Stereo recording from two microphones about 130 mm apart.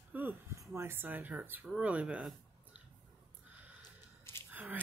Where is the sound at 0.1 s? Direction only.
15° right (ahead or behind).